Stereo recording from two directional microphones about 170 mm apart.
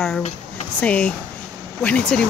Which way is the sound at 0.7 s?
5° left (ahead or behind).